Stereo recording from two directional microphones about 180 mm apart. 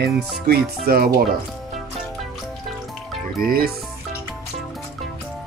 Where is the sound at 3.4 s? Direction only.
55° right (ahead or behind).